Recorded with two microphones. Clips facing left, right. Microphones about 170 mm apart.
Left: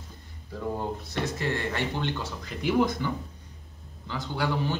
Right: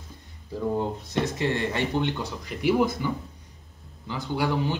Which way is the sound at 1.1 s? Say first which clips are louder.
Right 4 dB; 20° right (ahead or behind).